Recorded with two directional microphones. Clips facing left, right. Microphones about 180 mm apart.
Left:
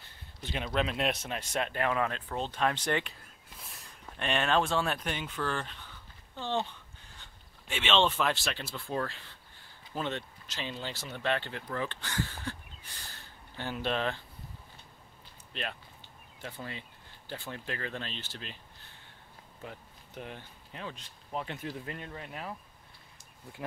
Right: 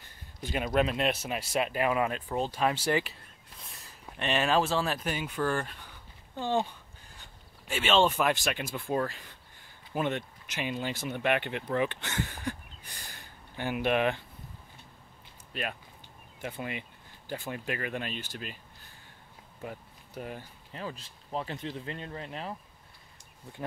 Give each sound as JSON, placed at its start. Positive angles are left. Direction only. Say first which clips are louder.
{"t": 0.4, "sound": "speech", "louder": "right 4 dB", "side_deg": -10}
{"t": 16.3, "sound": "speech", "louder": "right 5 dB", "side_deg": -15}
{"t": 19.6, "sound": "speech", "louder": "right 5 dB", "side_deg": -5}
{"t": 21.3, "sound": "speech", "louder": "right 2 dB", "side_deg": -30}